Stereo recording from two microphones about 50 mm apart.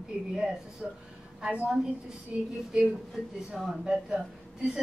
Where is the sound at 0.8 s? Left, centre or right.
Centre.